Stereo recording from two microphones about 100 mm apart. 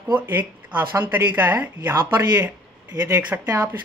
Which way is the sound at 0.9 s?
20° right (ahead or behind).